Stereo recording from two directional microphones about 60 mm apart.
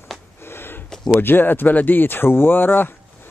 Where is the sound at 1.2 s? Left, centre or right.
Left.